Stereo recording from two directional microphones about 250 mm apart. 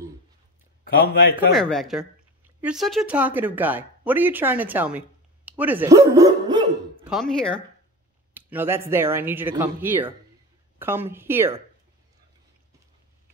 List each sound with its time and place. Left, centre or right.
1.3 s speech: centre
7.1 s speech: centre
8.4 s speech: centre